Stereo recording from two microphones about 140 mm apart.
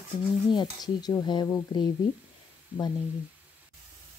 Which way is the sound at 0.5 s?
30° left (ahead or behind).